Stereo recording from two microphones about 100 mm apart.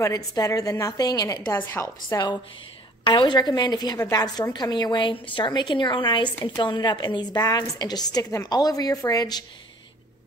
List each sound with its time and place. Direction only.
0.0 s a woman's voice: 35° left (ahead or behind)
1.5 s a woman's voice: 25° left (ahead or behind)
3.0 s a woman's voice: 50° left (ahead or behind)